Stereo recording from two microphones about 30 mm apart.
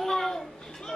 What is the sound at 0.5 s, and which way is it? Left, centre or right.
Chatter, centre.